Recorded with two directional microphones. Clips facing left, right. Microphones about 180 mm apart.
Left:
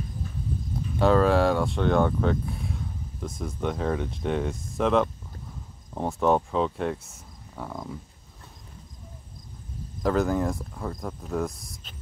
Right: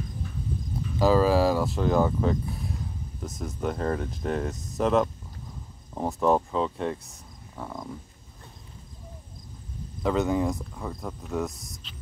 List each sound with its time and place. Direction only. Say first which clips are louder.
0.9 s speech: even; centre (ahead or behind)
10.0 s speech: even; centre (ahead or behind)
11.8 s speech: even; 45° left (ahead or behind)